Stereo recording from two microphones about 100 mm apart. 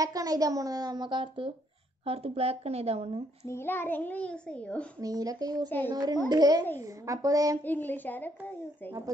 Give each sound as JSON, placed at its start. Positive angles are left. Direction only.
{"t": 0.0, "sound": "a woman's voice", "side_deg": -35}
{"t": 2.0, "sound": "a woman's voice", "side_deg": -85}
{"t": 3.4, "sound": "a child's voice", "side_deg": 25}
{"t": 5.0, "sound": "a woman's voice", "side_deg": -35}
{"t": 7.6, "sound": "a child's voice", "side_deg": 20}